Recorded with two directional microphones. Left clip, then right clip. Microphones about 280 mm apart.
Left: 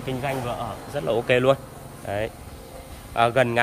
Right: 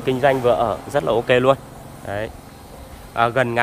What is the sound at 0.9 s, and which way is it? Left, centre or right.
Speech, centre.